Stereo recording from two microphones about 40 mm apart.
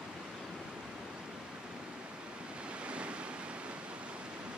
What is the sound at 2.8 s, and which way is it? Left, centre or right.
Waves, right.